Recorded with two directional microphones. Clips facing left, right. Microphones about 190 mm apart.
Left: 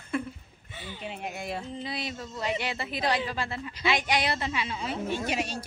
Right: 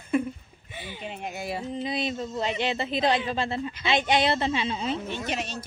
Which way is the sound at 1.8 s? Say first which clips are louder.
Right 6 dB; 20° right (ahead or behind).